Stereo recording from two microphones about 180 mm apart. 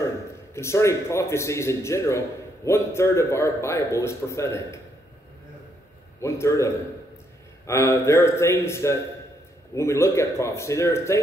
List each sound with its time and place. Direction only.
0.6 s a man's voice: 15° left (ahead or behind)
6.2 s a man's voice: 15° left (ahead or behind)